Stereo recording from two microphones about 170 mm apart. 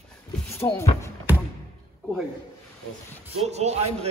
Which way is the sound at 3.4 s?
40° right (ahead or behind).